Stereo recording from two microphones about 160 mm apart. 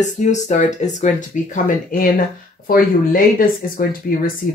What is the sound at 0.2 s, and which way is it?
Speech, 50° left (ahead or behind).